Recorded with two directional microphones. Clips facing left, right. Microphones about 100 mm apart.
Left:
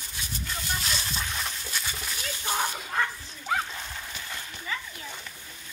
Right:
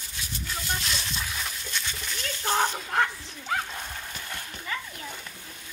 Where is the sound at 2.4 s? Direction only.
60° right (ahead or behind).